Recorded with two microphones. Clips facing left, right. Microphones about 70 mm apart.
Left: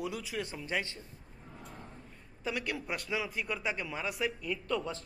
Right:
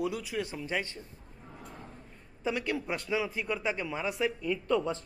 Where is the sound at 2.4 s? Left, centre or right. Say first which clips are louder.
Right 4 dB; right.